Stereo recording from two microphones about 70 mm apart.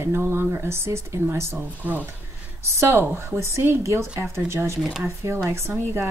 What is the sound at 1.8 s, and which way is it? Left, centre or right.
A woman's voice, right.